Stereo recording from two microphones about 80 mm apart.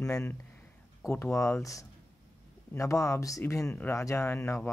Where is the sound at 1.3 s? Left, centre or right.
Left.